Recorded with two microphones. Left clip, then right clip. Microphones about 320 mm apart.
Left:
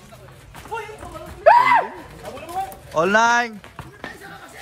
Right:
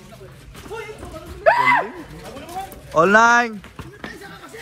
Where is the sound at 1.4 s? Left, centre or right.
Left.